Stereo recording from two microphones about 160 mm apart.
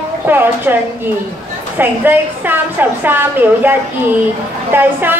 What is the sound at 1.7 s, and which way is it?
A woman's voice, 10° right (ahead or behind).